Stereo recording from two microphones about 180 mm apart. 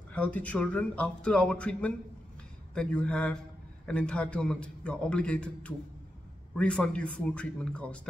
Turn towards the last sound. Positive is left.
turn(degrees=5)  # may be behind; listen again after turning